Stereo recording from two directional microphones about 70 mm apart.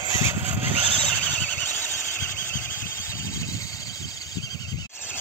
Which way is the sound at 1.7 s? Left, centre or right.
Left.